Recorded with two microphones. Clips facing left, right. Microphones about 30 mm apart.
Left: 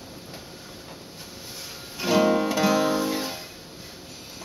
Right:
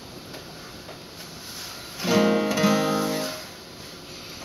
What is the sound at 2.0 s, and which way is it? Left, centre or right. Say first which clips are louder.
Music: even; centre.